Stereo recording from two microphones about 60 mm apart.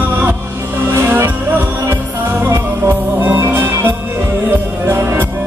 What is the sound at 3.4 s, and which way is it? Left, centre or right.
Music, right.